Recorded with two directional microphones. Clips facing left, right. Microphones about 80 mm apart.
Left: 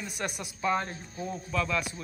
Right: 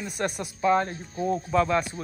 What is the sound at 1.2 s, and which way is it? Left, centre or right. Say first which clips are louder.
Speech: right 8 dB; right.